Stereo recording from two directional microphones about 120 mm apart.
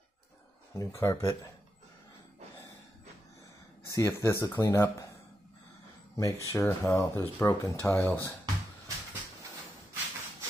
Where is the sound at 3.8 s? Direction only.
25° left (ahead or behind).